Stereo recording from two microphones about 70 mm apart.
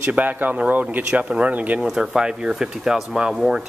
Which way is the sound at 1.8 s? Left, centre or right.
Centre.